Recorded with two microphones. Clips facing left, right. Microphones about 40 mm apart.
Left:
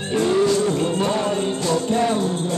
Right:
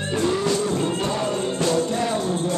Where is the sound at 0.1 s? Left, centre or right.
Centre.